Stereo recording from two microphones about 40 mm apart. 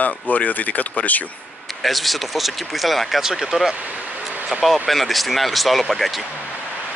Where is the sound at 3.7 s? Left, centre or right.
Right.